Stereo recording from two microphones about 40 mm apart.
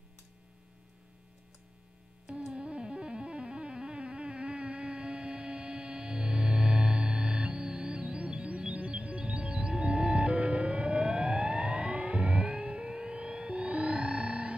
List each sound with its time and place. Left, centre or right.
2.5 s music: right